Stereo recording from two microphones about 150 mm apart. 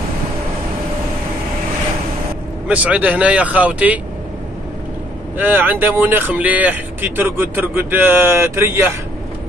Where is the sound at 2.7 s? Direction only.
10° right (ahead or behind).